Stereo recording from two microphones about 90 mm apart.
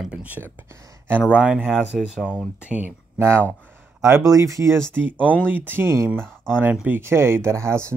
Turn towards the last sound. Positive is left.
turn(degrees=-30)  # may be behind; listen again after turning